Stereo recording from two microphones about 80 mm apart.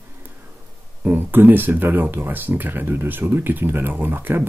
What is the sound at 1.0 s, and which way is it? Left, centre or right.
Speech, right.